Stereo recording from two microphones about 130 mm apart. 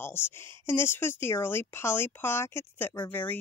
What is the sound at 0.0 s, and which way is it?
Speech, 20° left (ahead or behind).